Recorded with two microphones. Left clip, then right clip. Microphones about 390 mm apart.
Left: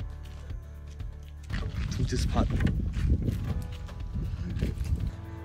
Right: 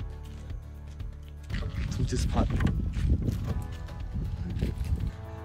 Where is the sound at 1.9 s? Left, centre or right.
Centre.